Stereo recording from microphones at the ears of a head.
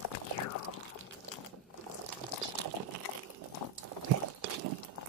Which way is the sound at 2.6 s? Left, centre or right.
Right.